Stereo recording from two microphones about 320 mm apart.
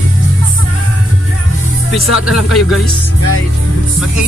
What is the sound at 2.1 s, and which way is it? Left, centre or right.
Speech, left.